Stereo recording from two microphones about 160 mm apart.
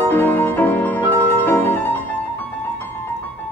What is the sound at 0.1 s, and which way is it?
Music, 10° left (ahead or behind).